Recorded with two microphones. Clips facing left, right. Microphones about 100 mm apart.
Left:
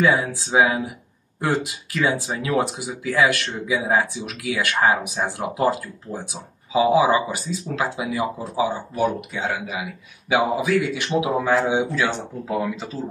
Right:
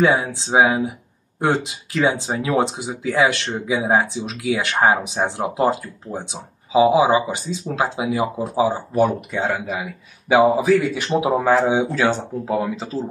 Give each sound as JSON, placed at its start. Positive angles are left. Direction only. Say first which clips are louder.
{"t": 0.0, "sound": "speech", "louder": "right 2 dB", "side_deg": -25}